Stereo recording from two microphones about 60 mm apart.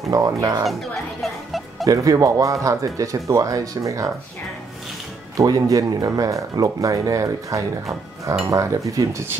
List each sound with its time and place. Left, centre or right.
0.1 s speech: right
0.7 s a sound: centre
1.9 s speech: right
5.4 s speech: right
8.5 s cutlery: right